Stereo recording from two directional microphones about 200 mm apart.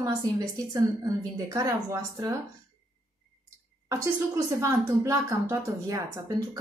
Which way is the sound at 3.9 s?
15° right (ahead or behind).